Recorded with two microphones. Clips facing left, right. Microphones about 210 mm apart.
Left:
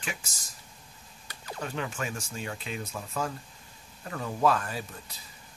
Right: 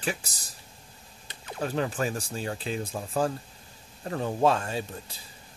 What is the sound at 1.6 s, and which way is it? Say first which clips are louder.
Speech: right 6 dB; 35° right (ahead or behind).